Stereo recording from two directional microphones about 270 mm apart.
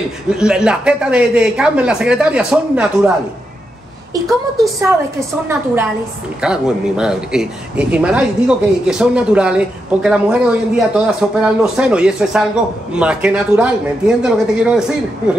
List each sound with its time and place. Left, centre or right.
0.3 s speech: centre
6.4 s speech: centre